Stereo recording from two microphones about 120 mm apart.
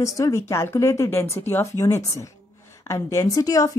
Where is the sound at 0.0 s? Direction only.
25° left (ahead or behind).